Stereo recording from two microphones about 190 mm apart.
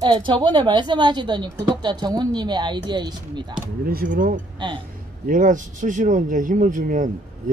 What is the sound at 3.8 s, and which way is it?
Speech, 50° right (ahead or behind).